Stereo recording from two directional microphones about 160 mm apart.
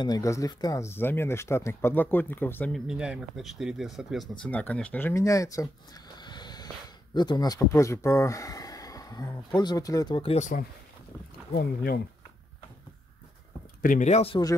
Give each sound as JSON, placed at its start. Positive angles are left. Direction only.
{"t": 0.0, "sound": "speech", "side_deg": 20}
{"t": 2.7, "sound": "speech", "side_deg": -5}
{"t": 6.1, "sound": "a sound", "side_deg": 25}
{"t": 7.2, "sound": "speech", "side_deg": 25}
{"t": 11.5, "sound": "speech", "side_deg": 70}
{"t": 13.8, "sound": "speech", "side_deg": 50}